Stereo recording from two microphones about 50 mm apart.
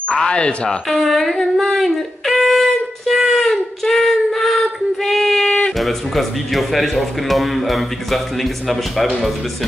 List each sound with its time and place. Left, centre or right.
0.1 s speech: left
0.8 s a sound: centre
5.8 s speech: centre